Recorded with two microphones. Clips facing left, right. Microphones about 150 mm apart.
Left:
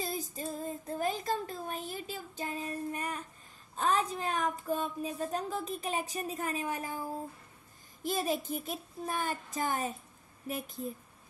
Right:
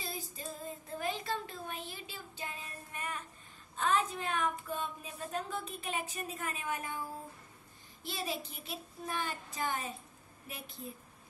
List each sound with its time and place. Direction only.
0.0 s female singing: 45° left (ahead or behind)
3.7 s speech: 40° left (ahead or behind)
8.0 s a child's voice: 45° left (ahead or behind)